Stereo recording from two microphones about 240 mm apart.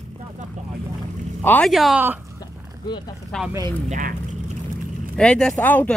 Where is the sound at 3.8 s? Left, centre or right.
Right.